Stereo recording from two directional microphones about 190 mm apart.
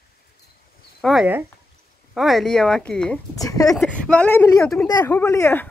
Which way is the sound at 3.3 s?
20° left (ahead or behind).